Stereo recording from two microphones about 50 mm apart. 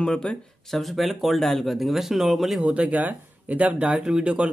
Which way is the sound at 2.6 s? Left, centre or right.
Right.